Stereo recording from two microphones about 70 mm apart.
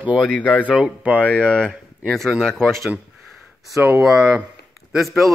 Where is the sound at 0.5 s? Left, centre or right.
Centre.